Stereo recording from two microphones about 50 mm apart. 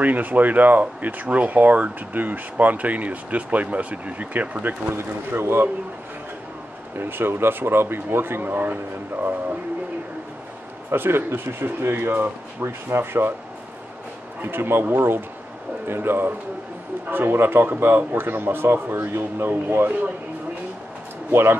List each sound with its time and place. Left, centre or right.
0.0 s speech: right
5.4 s speech: right
7.0 s speech: right
10.9 s speech: right
14.4 s speech: right
21.3 s speech: right